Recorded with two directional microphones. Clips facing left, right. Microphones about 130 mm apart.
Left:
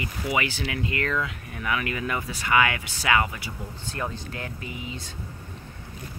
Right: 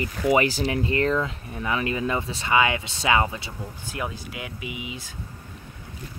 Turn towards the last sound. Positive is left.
turn(degrees=-10)  # may be behind; listen again after turning